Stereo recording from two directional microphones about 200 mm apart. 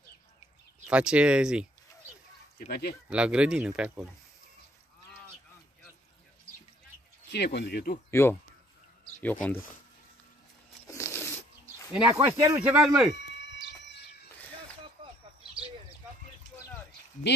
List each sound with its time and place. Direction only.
0.8 s speech: 5° right (ahead or behind)
2.6 s speech: 50° left (ahead or behind)
3.1 s speech: 5° right (ahead or behind)
7.2 s speech: 60° left (ahead or behind)
8.1 s speech: 10° left (ahead or behind)
10.9 s a sound: 15° left (ahead or behind)
11.9 s speech: 10° right (ahead or behind)
13.4 s a sound: 60° left (ahead or behind)